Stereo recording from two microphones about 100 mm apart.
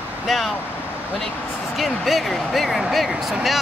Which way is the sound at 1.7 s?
Centre (ahead or behind).